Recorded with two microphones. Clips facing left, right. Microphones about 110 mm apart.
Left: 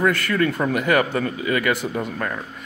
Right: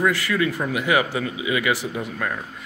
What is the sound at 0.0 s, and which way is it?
A man's voice, 50° left (ahead or behind).